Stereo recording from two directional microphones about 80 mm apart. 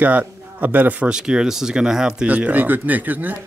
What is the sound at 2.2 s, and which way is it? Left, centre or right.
Speech, right.